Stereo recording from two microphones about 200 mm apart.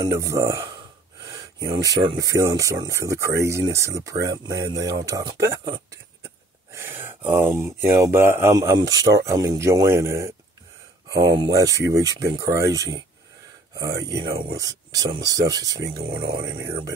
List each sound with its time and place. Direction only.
0.0 s speech: 15° right (ahead or behind)
1.7 s speech: 20° right (ahead or behind)